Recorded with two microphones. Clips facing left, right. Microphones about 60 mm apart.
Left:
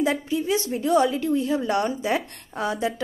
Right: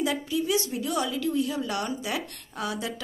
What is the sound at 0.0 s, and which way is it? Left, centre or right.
A woman's voice, left.